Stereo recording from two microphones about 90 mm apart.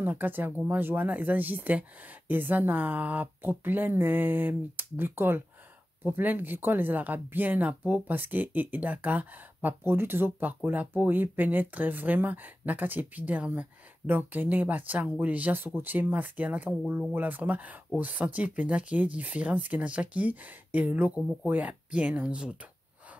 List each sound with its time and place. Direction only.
0.0 s speech: 20° right (ahead or behind)